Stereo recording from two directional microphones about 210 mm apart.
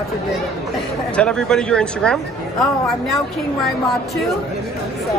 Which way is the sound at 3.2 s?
Centre (ahead or behind).